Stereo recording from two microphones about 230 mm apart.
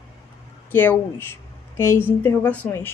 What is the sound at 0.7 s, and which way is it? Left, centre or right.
A woman's voice, centre.